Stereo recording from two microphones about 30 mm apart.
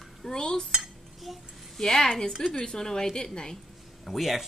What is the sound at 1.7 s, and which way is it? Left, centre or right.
A woman's voice, centre.